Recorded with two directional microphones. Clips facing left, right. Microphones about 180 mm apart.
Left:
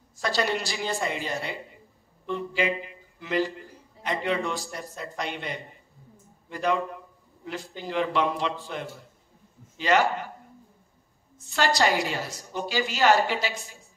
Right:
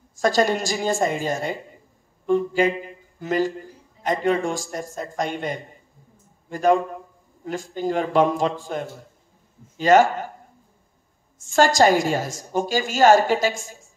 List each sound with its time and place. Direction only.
0.2 s a woman's voice: 45° right (ahead or behind)
2.2 s a sound: 45° right (ahead or behind)
4.0 s a woman's voice: 45° right (ahead or behind)
11.3 s a woman's voice: 45° right (ahead or behind)